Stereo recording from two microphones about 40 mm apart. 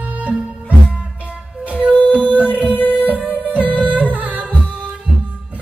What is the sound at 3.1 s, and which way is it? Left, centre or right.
Music, right.